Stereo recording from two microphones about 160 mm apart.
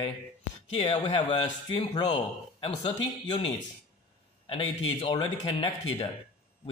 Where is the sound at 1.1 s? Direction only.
35° left (ahead or behind).